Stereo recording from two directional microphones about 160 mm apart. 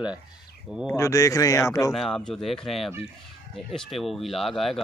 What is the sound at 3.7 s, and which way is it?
Speech, centre (ahead or behind).